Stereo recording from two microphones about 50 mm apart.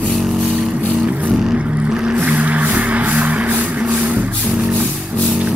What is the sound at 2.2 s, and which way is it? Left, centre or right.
Music, right.